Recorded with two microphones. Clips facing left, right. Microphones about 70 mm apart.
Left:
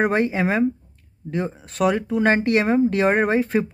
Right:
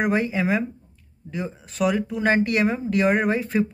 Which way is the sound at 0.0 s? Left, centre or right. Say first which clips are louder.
Left 2 dB; left.